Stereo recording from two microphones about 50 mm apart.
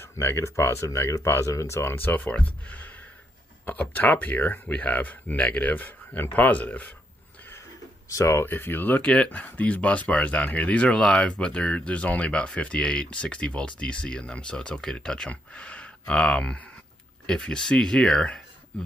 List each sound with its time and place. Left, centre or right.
0.0 s speech: left
2.0 s speech: left
3.9 s speech: left
8.5 s speech: left
9.0 s speech: left